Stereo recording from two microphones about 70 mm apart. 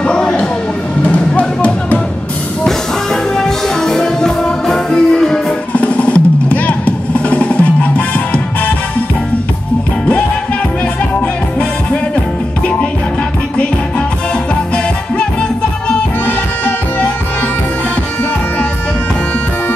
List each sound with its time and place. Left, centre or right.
0.0 s a sound: centre
1.0 s music: centre
2.6 s music: centre
5.7 s drum: centre